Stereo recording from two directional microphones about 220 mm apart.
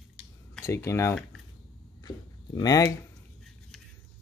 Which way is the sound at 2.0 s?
15° left (ahead or behind).